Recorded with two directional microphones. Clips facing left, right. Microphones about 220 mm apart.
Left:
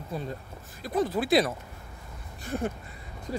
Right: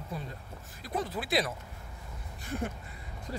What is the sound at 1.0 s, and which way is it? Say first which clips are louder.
Speech: left 9 dB; 35° left (ahead or behind).